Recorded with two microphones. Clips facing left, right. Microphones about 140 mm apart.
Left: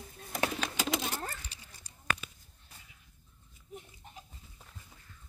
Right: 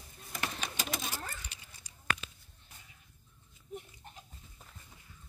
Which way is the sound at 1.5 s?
35° left (ahead or behind).